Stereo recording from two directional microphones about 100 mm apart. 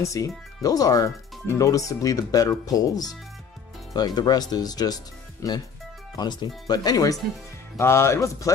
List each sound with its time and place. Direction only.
0.0 s speech: 35° left (ahead or behind)
7.7 s speech: 25° left (ahead or behind)